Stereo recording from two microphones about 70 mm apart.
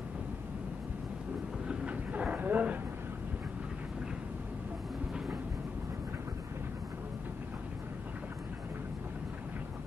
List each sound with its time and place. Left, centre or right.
1.7 s train: centre